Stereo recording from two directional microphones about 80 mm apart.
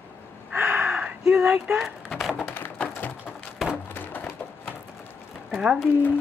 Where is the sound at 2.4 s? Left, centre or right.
Left.